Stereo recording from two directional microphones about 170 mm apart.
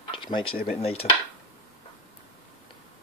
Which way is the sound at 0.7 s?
35° left (ahead or behind).